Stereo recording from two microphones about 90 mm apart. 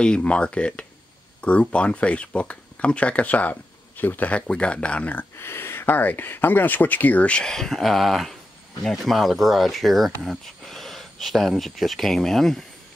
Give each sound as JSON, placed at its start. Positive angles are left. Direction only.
{"t": 0.0, "sound": "speech", "side_deg": 10}
{"t": 5.4, "sound": "speech", "side_deg": 25}